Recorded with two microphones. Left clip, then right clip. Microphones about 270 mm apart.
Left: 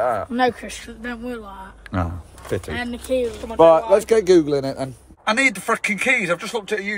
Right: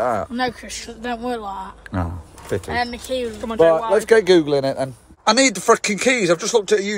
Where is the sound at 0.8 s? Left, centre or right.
Centre.